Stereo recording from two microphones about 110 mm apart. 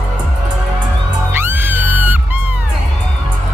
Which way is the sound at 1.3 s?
20° right (ahead or behind).